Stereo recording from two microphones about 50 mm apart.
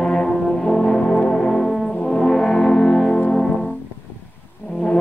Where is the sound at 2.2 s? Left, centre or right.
Centre.